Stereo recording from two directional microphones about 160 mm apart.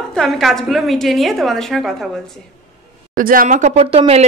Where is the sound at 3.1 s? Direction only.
60° right (ahead or behind); by 4.3 s 40° right (ahead or behind).